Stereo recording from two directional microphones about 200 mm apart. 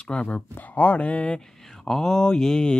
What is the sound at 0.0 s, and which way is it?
Speech, 5° left (ahead or behind).